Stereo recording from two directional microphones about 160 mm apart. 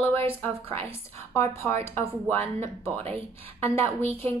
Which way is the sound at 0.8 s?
15° left (ahead or behind).